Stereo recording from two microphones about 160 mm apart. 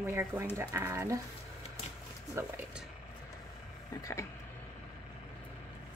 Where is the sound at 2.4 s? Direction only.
20° right (ahead or behind).